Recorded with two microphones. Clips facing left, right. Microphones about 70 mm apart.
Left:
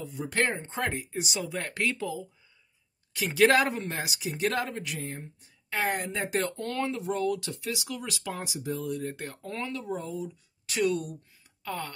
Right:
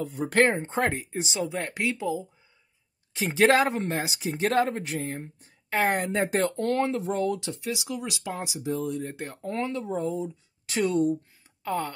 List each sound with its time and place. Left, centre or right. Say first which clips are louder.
0.0 s speech: right 6 dB; right